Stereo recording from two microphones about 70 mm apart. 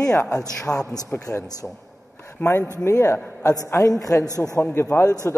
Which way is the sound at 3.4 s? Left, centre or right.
Left.